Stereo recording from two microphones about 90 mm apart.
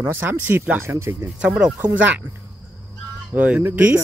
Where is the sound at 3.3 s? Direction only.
15° right (ahead or behind).